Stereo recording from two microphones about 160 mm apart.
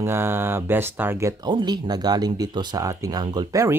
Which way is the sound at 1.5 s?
30° right (ahead or behind).